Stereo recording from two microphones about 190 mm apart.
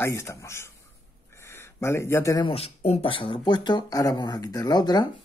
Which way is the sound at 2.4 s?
30° left (ahead or behind).